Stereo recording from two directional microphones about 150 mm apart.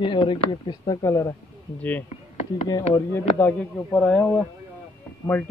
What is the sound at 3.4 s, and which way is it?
A man's voice, 10° left (ahead or behind).